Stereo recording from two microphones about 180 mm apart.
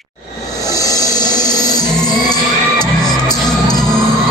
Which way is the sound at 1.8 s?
5° left (ahead or behind).